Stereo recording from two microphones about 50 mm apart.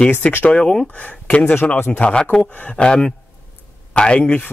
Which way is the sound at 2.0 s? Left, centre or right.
Centre.